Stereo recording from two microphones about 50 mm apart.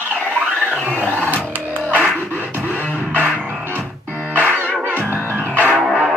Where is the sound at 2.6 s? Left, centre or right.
Right.